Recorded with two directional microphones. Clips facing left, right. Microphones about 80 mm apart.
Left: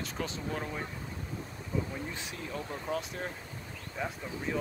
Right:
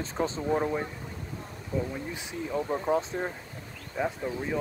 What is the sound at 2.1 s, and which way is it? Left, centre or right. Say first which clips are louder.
Speech: right 7 dB; centre.